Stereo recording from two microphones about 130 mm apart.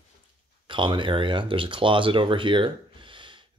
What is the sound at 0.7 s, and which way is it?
Speech, 40° right (ahead or behind).